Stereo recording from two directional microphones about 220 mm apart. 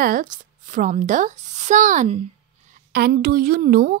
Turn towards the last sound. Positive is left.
turn(degrees=-40)  # may be behind; listen again after turning